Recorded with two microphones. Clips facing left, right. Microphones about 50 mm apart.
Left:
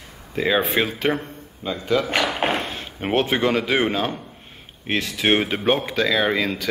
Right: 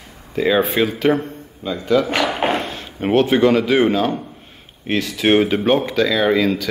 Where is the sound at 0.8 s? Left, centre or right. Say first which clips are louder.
Right 5 dB; centre.